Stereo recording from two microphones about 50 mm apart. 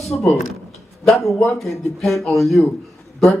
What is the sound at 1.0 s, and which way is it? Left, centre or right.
A man's voice, centre.